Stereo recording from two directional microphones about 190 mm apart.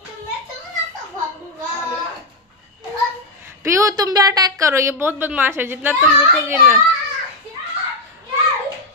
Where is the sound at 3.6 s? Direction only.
15° right (ahead or behind).